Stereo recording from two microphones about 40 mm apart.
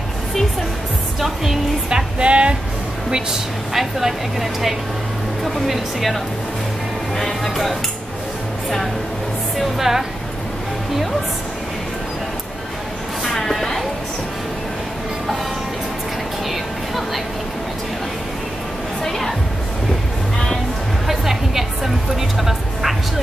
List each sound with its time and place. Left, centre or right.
1.2 s a woman's voice: centre
2.1 s speech: right
3.7 s speech: centre
7.2 s speech: centre
9.6 s a woman's voice: centre
13.2 s a sound: centre
19.0 s speech: centre
21.1 s a woman's voice: centre